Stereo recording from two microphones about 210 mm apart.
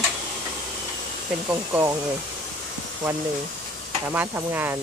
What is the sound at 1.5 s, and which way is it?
Stir, 15° right (ahead or behind).